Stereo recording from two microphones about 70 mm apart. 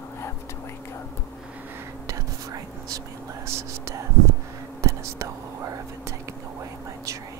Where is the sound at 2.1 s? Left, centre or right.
Right.